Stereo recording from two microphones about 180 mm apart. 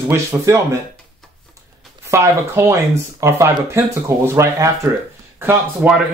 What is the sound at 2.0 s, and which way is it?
Speech, 15° right (ahead or behind).